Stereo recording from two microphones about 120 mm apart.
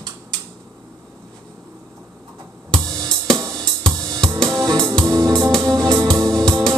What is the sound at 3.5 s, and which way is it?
Cymbal, 5° left (ahead or behind).